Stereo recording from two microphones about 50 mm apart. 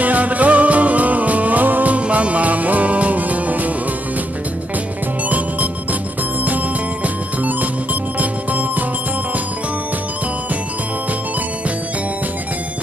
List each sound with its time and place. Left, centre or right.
0.0 s music: right
7.4 s music: right